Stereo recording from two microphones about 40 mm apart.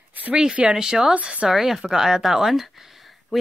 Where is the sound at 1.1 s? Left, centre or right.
Right.